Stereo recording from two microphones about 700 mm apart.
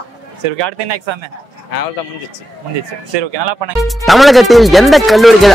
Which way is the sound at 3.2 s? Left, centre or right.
Right.